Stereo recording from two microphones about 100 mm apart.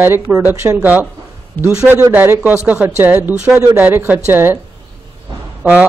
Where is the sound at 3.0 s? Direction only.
20° right (ahead or behind).